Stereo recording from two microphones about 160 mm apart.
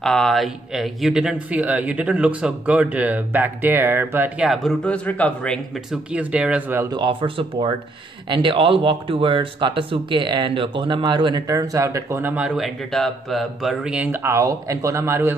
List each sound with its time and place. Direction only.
0.0 s a man's voice: 5° left (ahead or behind)
4.5 s speech: 5° left (ahead or behind)
6.1 s a man's voice: 5° right (ahead or behind)
6.9 s speech: 30° right (ahead or behind)